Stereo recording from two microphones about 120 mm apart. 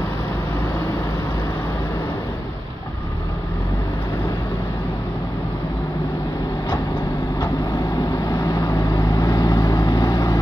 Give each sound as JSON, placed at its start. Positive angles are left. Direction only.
{"t": 7.3, "sound": "vehicle", "side_deg": 35}